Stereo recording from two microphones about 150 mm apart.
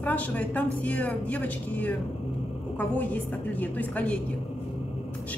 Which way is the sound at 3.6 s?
10° left (ahead or behind).